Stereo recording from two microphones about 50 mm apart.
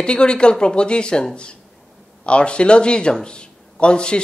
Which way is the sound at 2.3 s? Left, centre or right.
Left.